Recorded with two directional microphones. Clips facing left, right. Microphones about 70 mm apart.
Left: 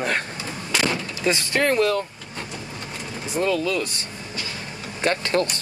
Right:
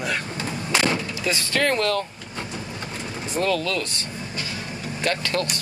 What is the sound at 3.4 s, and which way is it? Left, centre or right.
Speech, centre.